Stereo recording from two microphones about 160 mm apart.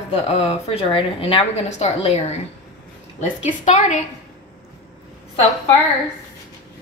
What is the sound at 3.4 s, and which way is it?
Speech, 45° left (ahead or behind).